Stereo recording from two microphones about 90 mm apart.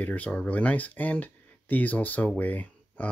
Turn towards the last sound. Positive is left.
turn(degrees=15)  # may be behind; listen again after turning